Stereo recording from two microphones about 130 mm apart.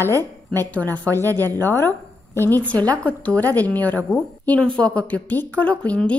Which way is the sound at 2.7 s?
10° left (ahead or behind).